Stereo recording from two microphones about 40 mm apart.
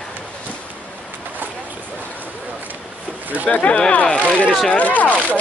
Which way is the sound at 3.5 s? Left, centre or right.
Left.